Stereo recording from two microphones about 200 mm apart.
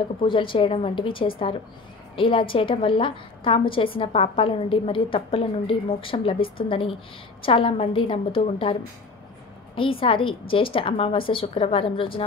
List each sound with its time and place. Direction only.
0.2 s a woman's voice: 25° left (ahead or behind)
9.8 s a woman's voice: 25° left (ahead or behind)